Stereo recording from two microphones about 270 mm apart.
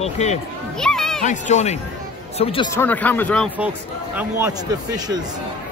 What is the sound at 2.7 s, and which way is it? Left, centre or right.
Speech, centre.